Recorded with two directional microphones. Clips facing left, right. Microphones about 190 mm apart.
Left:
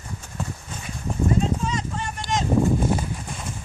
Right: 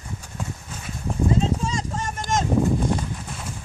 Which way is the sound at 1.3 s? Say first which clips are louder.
Even; 30° right (ahead or behind).